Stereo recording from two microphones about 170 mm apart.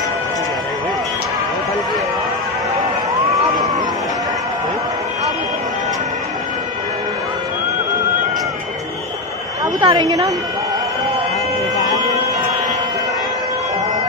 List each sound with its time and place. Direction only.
9.8 s a woman's voice: 30° right (ahead or behind)